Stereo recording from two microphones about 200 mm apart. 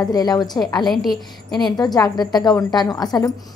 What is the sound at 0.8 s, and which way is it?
Speech, centre (ahead or behind).